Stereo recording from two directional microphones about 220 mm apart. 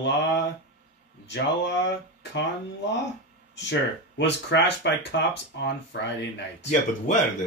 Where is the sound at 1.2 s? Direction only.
55° left (ahead or behind).